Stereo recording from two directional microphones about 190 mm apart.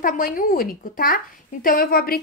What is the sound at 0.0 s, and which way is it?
Speech, 45° left (ahead or behind).